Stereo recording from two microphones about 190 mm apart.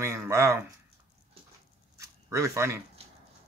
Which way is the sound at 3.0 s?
30° right (ahead or behind).